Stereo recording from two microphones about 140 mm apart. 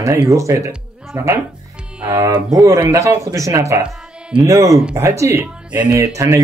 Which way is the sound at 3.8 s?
5° right (ahead or behind).